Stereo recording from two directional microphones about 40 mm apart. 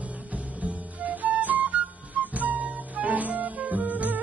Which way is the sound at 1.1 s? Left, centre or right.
Right.